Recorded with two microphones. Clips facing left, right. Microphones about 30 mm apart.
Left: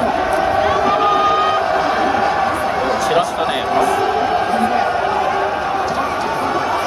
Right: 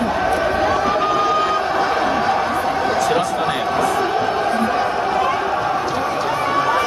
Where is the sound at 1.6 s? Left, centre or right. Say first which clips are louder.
Left 2 dB; centre.